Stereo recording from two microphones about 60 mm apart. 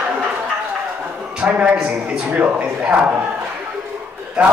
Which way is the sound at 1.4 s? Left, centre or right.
Centre.